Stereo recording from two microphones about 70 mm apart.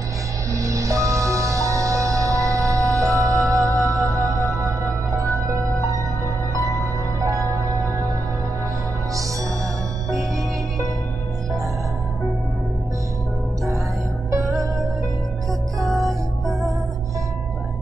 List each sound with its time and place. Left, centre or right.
0.5 s music: right
15.8 s music: centre